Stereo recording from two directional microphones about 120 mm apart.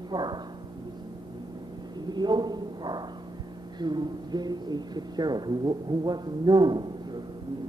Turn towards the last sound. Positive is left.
turn(degrees=-35)  # may be behind; listen again after turning